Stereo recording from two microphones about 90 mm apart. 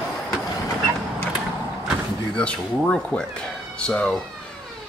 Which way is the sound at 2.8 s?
5° left (ahead or behind).